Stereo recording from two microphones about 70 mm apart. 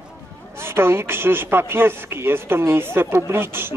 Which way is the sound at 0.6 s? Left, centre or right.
Right.